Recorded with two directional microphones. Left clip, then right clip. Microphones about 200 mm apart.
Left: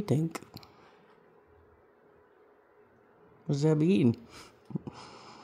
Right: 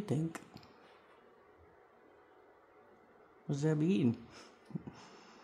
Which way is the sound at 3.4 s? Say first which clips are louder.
Left 7 dB; 25° left (ahead or behind).